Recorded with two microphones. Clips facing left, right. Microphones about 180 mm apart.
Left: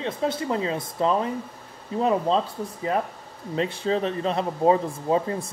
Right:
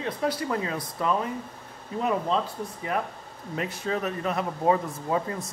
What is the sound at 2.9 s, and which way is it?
Speech, 30° left (ahead or behind).